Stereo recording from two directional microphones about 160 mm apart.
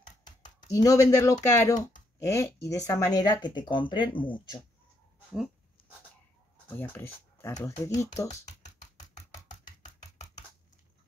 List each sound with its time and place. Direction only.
0.0 s a sound: 55° left (ahead or behind)
0.7 s speech: 20° left (ahead or behind)
1.8 s a sound: 55° left (ahead or behind)
2.1 s speech: 20° left (ahead or behind)
6.7 s speech: 10° left (ahead or behind)
8.3 s speech: 45° left (ahead or behind)